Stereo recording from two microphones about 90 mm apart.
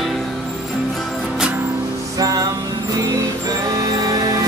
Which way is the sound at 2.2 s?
40° right (ahead or behind).